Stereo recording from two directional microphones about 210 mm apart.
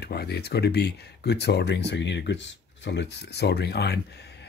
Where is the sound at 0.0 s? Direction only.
50° left (ahead or behind).